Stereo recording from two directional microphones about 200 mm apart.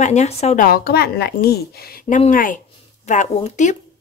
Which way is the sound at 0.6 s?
50° left (ahead or behind).